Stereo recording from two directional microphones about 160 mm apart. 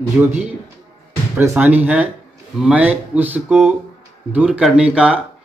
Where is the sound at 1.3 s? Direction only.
10° right (ahead or behind).